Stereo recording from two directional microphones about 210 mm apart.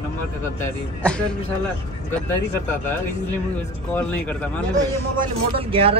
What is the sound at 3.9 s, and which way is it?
Speech, 5° left (ahead or behind).